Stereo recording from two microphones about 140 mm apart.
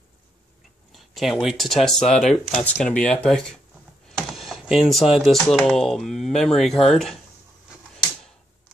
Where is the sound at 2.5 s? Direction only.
50° left (ahead or behind).